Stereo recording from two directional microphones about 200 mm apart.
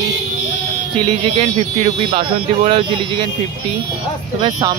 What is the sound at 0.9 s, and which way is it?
Speech, 30° right (ahead or behind).